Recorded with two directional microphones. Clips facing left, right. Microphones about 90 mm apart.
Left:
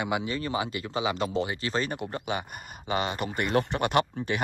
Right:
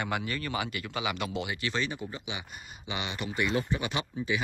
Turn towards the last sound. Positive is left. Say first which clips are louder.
# left 6 dB
turn(degrees=55)  # may be behind; listen again after turning